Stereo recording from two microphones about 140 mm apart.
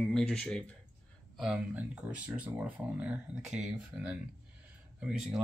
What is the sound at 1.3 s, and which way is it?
Speech, 5° right (ahead or behind).